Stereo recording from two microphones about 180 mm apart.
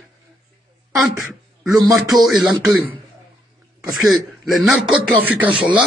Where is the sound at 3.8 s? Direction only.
Centre (ahead or behind).